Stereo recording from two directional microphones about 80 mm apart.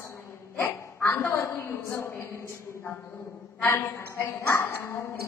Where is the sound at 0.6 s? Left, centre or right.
Left.